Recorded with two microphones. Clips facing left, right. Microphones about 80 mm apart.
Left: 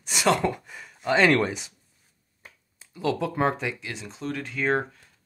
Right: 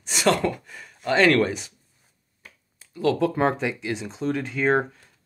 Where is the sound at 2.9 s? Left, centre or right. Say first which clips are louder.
Right 5 dB; centre.